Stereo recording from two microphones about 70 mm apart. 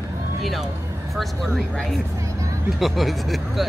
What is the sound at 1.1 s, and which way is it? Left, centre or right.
Speech, centre.